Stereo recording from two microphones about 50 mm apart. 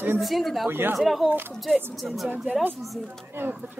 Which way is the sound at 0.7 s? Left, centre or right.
Right.